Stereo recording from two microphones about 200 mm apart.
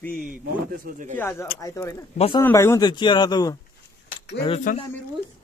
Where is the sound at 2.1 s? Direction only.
30° left (ahead or behind).